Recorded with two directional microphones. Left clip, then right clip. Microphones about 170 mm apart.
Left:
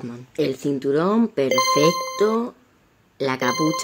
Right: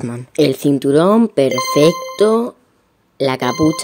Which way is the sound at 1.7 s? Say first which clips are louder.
Right 5 dB; 35° right (ahead or behind).